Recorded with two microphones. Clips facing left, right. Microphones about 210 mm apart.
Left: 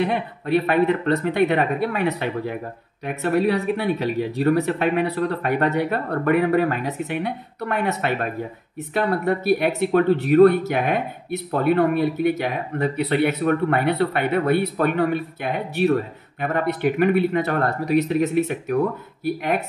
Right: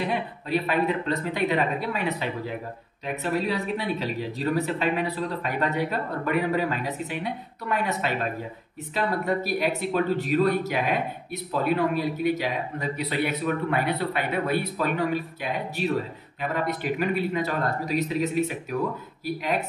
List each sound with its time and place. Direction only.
0.0 s speech: 60° left (ahead or behind)